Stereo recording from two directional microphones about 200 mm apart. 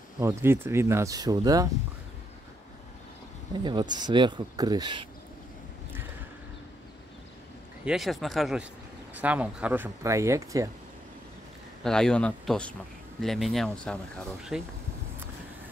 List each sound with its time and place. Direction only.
0.2 s speech: 15° right (ahead or behind)
3.6 s speech: 20° right (ahead or behind)
7.8 s speech: centre (ahead or behind)
11.8 s speech: 5° left (ahead or behind)